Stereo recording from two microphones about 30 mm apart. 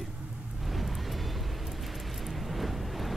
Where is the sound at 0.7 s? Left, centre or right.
Centre.